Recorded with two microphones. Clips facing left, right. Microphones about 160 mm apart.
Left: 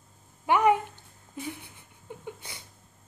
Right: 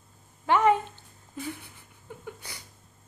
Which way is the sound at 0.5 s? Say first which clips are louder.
Even; 15° left (ahead or behind).